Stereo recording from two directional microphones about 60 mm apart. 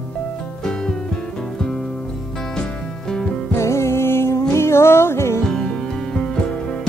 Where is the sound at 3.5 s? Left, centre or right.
Left.